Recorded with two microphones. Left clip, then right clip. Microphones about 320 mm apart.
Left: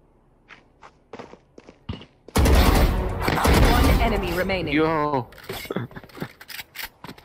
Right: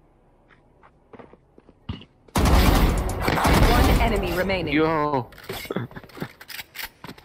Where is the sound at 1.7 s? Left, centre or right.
Centre.